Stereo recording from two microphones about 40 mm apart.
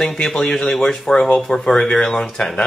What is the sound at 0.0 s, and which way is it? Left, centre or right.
Speech, centre.